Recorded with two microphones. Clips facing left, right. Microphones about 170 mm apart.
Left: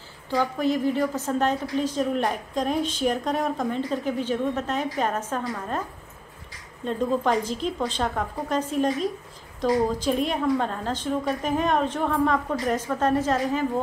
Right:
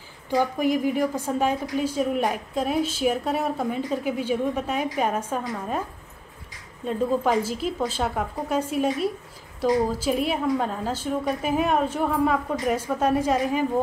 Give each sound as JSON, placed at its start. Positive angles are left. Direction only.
{"t": 0.3, "sound": "a woman's voice", "side_deg": -15}